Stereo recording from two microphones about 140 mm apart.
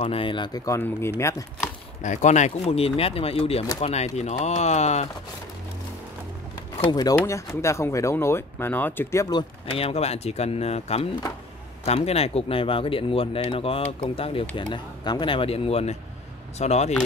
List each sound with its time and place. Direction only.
0.0 s speech: 40° left (ahead or behind)
0.7 s speech: 20° left (ahead or behind)
2.0 s speech: 55° left (ahead or behind)
6.9 s speech: 25° left (ahead or behind)
9.7 s speech: 45° left (ahead or behind)
14.6 s speech: 30° left (ahead or behind); by 16.9 s 50° left (ahead or behind)